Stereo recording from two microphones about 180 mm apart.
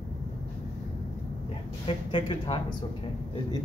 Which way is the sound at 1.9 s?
30° left (ahead or behind).